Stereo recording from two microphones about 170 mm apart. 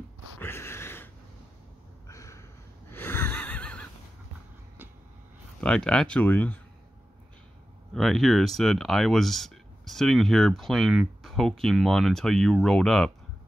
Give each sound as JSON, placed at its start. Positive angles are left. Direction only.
{"t": 0.4, "sound": "a sound", "side_deg": 15}
{"t": 2.9, "sound": "gasp", "side_deg": 15}
{"t": 5.6, "sound": "speech", "side_deg": 5}
{"t": 7.9, "sound": "speech", "side_deg": 0}